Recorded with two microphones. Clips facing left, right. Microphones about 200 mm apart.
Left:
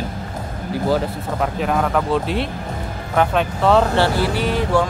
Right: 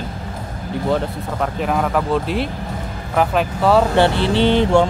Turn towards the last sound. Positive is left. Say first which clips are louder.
# right 5 dB
turn(degrees=-25)  # may be behind; listen again after turning